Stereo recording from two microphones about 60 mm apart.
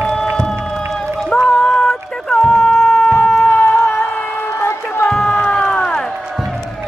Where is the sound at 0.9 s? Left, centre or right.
Centre.